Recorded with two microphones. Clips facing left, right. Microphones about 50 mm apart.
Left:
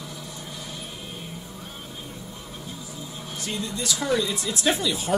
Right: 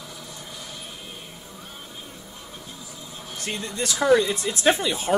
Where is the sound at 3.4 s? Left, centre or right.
Right.